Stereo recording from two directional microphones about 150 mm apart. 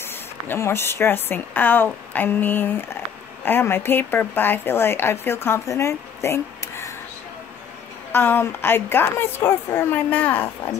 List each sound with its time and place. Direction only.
0.0 s speech: 15° left (ahead or behind)
8.1 s speech: 15° left (ahead or behind)